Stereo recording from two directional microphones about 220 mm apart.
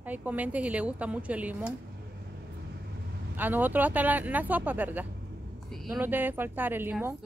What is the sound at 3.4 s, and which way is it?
A woman's voice, 10° right (ahead or behind).